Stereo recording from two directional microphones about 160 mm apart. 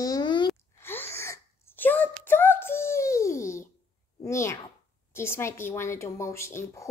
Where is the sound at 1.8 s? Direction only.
10° left (ahead or behind).